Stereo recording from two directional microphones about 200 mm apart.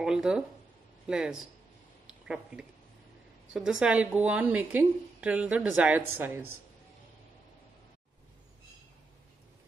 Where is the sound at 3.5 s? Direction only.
5° right (ahead or behind).